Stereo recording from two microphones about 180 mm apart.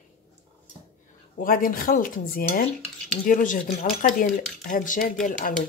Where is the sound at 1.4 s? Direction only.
50° left (ahead or behind).